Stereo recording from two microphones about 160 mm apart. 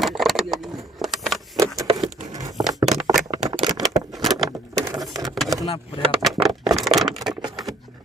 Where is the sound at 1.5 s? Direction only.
20° right (ahead or behind).